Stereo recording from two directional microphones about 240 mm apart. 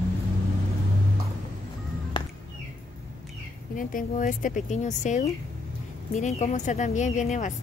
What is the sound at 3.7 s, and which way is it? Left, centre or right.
A woman's voice, left.